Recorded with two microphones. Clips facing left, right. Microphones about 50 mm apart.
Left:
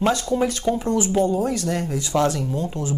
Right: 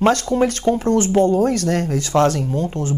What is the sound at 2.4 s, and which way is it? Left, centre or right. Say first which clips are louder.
Speech: right 4 dB; right.